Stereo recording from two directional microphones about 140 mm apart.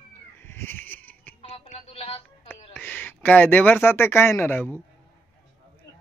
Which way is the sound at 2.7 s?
15° left (ahead or behind).